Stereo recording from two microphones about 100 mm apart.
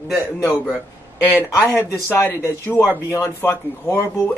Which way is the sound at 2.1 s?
25° left (ahead or behind).